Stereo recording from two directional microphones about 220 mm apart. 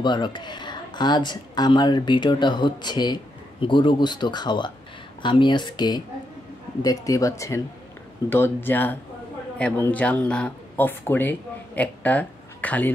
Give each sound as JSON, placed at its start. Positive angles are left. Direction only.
{"t": 0.0, "sound": "speech", "side_deg": 20}